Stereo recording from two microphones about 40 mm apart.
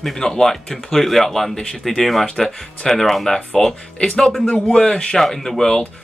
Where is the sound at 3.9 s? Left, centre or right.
Left.